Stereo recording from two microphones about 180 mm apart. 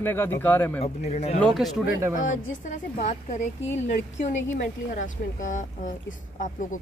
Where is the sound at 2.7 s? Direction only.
40° left (ahead or behind).